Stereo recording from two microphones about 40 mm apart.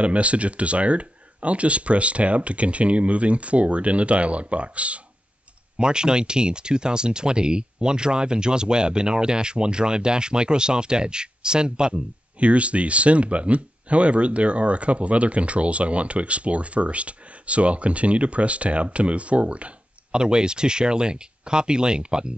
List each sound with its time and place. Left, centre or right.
0.0 s speech: right
5.8 s speech: right
20.1 s speech: right